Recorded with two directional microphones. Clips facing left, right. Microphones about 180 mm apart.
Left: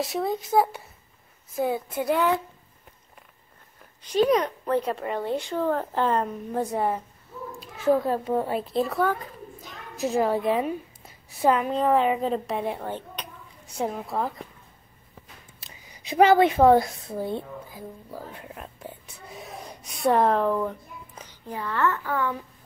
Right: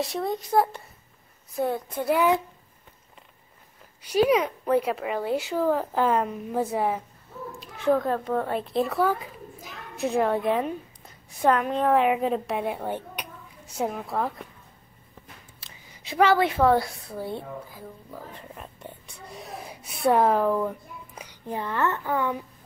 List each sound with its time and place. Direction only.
0.0 s a woman's voice: centre (ahead or behind)
2.1 s speech: 15° right (ahead or behind)
4.0 s a woman's voice: 10° right (ahead or behind)
13.7 s a woman's voice: centre (ahead or behind)
15.6 s a woman's voice: 15° left (ahead or behind)
18.1 s a child's voice: 5° left (ahead or behind); by 22.4 s 15° right (ahead or behind)